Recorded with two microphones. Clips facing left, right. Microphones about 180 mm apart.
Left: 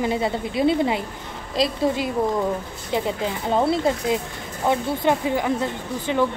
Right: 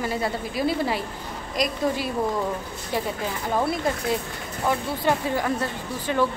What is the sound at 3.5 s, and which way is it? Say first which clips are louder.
Speech: left 4 dB; 25° left (ahead or behind).